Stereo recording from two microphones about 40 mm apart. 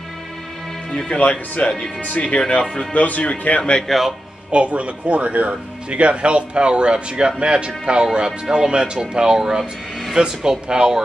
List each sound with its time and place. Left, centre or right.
1.1 s speech: left
3.8 s speech: centre
4.5 s speech: right